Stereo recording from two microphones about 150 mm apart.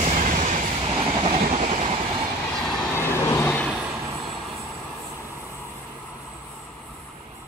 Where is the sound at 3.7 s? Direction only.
5° right (ahead or behind).